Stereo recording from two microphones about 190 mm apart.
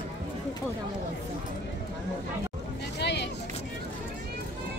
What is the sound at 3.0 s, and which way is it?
Vehicle, 65° left (ahead or behind).